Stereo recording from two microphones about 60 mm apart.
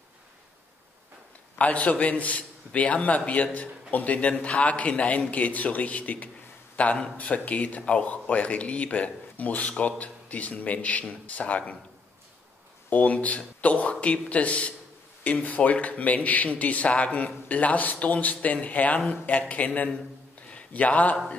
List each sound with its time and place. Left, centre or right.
1.6 s speech: left
12.9 s speech: left
20.4 s a sound: left